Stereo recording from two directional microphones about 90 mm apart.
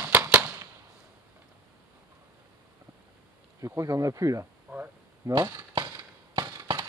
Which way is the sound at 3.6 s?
35° right (ahead or behind).